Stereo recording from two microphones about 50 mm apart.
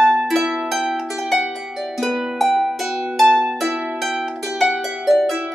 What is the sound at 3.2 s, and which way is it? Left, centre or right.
Harp, centre.